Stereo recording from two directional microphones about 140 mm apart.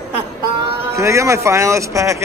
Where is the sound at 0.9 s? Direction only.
20° right (ahead or behind).